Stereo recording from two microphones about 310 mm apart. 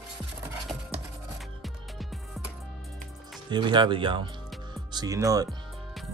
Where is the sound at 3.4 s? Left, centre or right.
Centre.